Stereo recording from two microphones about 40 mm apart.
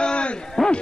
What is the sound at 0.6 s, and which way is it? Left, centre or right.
Speech, centre.